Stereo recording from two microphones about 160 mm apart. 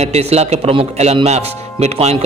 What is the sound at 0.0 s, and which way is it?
A man's voice, 40° right (ahead or behind).